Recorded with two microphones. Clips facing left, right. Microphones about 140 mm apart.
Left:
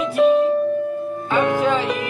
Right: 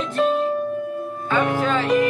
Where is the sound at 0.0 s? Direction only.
10° left (ahead or behind).